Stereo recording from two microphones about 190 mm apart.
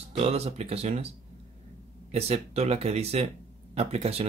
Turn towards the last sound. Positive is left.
turn(degrees=-35)  # may be behind; listen again after turning